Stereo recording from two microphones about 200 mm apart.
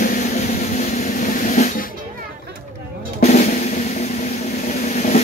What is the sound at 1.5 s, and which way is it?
Music, 35° left (ahead or behind).